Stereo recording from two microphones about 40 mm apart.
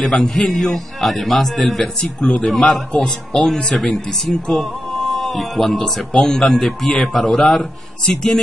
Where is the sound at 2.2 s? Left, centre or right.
Left.